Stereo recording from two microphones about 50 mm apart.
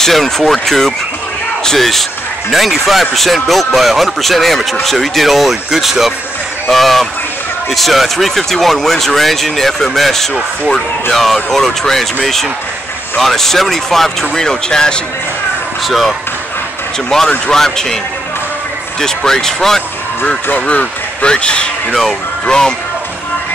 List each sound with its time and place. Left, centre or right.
0.0 s speech: centre
6.7 s a sound: centre
7.7 s speech: centre
15.8 s speech: centre
18.9 s speech: centre
20.5 s speech: left